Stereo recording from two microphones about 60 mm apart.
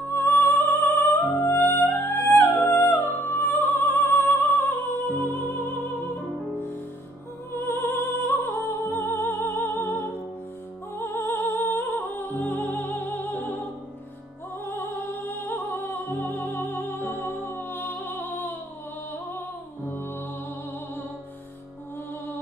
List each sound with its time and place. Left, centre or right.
0.1 s music: left
7.5 s music: left
15.3 s music: left